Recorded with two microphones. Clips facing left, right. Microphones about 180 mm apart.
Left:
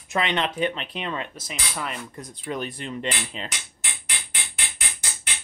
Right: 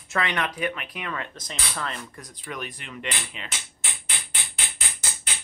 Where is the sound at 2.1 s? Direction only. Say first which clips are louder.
Left 5 dB; 25° left (ahead or behind).